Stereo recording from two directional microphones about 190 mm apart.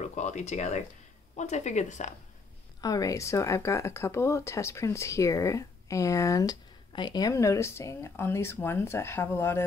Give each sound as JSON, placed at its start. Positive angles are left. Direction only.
{"t": 0.1, "sound": "a woman's voice", "side_deg": 40}
{"t": 2.8, "sound": "speech", "side_deg": 20}